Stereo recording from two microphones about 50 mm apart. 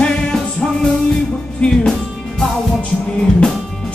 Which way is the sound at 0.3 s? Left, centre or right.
Centre.